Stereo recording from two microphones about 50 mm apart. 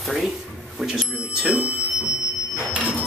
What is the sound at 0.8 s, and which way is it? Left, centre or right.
Smoke detector, centre.